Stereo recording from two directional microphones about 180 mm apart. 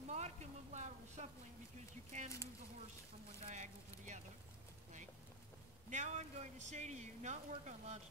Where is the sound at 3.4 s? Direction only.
40° right (ahead or behind).